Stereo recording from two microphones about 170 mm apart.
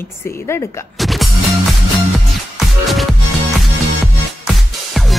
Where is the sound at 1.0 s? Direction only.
Centre (ahead or behind).